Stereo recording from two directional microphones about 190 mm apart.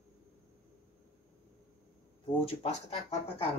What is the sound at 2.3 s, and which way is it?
Speech, 30° left (ahead or behind).